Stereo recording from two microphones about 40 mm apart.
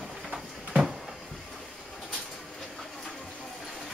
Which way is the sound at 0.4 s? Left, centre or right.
Centre.